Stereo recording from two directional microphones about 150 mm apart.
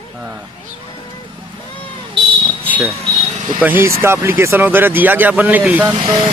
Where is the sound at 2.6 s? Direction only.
10° right (ahead or behind).